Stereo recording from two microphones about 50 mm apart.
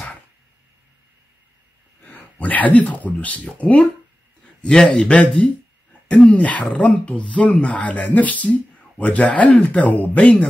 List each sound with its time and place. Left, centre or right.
2.0 s speech: left
4.6 s a man's voice: centre